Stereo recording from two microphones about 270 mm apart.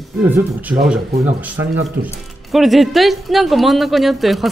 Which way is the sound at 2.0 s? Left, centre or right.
Right.